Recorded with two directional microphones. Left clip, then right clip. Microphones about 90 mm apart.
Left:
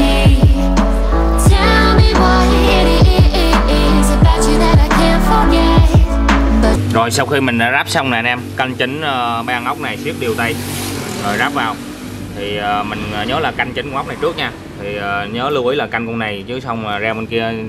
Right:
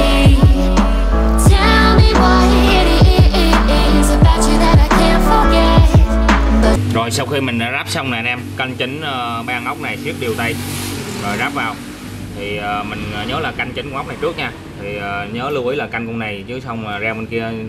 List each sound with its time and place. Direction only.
0.0 s music: centre (ahead or behind)
6.9 s speech: 20° left (ahead or behind)
13.3 s speech: 20° left (ahead or behind)